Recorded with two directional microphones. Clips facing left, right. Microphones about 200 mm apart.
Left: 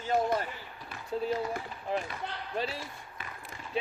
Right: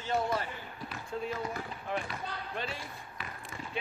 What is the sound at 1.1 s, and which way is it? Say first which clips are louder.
Speech: left 5 dB; 30° left (ahead or behind).